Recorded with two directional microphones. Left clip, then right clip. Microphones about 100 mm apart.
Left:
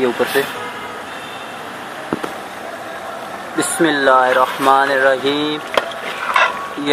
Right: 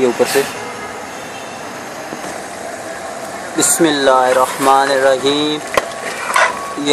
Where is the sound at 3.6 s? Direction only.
15° right (ahead or behind).